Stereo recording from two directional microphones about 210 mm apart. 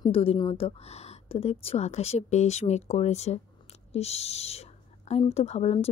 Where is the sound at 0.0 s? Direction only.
25° left (ahead or behind).